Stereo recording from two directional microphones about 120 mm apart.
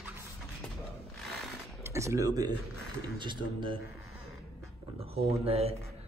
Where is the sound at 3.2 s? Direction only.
40° right (ahead or behind).